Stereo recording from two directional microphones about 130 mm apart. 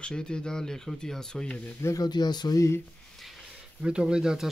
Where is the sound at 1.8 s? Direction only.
30° left (ahead or behind).